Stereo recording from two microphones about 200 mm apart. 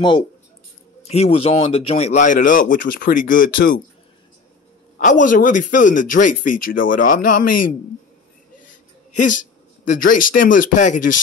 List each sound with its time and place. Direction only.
1.0 s speech: 30° left (ahead or behind)
4.9 s speech: 40° left (ahead or behind)
9.2 s speech: 40° left (ahead or behind)